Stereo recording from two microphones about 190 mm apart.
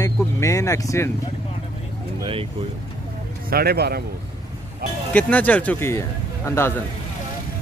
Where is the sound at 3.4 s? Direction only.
55° right (ahead or behind).